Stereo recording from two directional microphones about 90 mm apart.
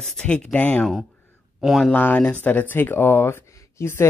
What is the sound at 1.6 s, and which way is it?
Speech, 5° right (ahead or behind).